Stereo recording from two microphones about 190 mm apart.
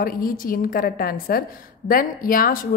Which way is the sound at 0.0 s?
50° left (ahead or behind).